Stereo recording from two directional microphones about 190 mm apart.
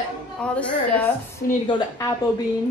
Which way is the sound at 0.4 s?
5° left (ahead or behind).